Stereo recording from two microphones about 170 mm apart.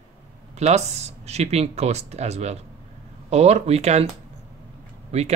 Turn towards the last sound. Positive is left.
turn(degrees=-40)  # may be behind; listen again after turning